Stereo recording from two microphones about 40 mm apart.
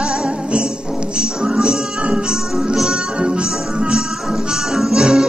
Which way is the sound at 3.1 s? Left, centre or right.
Right.